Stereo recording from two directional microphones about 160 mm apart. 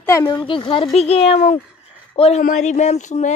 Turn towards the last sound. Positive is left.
turn(degrees=45)  # may be behind; listen again after turning